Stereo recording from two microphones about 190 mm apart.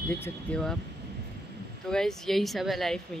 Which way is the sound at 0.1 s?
5° left (ahead or behind).